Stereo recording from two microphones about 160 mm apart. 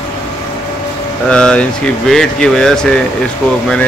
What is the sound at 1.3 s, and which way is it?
Speech, 5° left (ahead or behind).